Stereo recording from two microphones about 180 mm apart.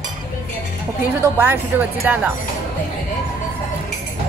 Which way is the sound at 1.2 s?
10° right (ahead or behind).